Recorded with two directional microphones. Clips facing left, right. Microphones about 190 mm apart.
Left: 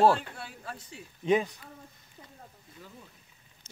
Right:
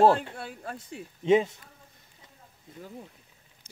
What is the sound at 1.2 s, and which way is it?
Speech, 25° right (ahead or behind).